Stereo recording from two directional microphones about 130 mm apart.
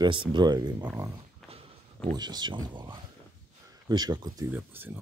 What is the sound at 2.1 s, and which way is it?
Speech, 35° right (ahead or behind).